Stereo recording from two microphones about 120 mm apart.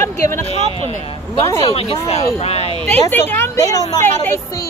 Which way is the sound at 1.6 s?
55° left (ahead or behind).